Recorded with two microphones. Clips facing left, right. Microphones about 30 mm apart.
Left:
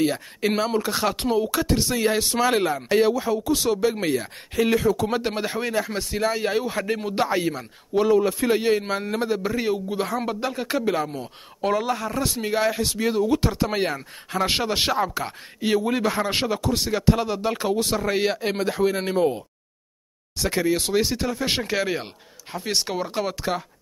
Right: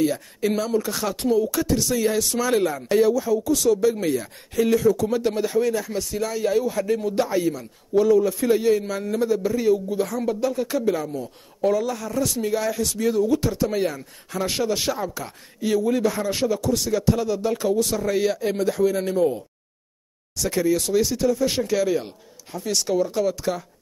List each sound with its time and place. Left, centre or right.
0.0 s speech: left